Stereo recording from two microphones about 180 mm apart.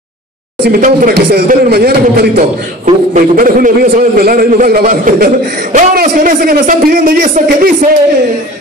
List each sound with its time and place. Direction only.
0.7 s a man's voice: 50° right (ahead or behind)